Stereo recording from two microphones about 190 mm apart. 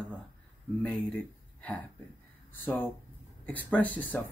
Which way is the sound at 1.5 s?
5° left (ahead or behind).